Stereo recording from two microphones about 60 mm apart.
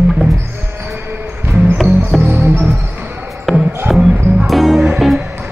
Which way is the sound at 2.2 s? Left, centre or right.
Right.